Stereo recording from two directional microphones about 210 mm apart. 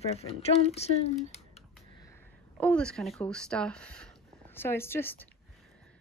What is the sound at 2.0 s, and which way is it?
A woman's voice, 15° left (ahead or behind).